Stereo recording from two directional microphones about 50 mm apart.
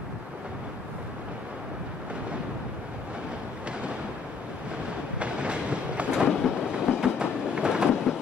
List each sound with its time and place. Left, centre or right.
5.2 s train: right